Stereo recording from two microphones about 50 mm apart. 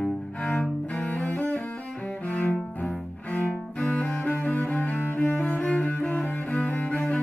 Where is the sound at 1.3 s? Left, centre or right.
Left.